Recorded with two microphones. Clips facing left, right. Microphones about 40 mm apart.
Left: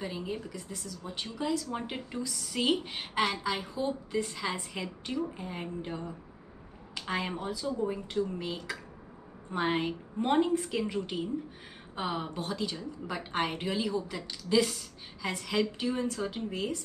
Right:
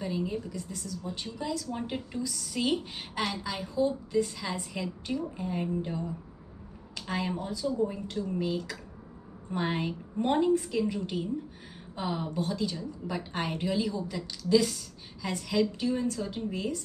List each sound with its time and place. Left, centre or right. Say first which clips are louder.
0.0 s a woman's voice: right 4 dB; centre
12.0 s a woman's voice: right 2 dB; centre